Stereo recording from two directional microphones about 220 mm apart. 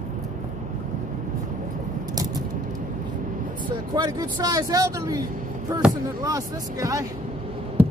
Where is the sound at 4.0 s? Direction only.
20° right (ahead or behind).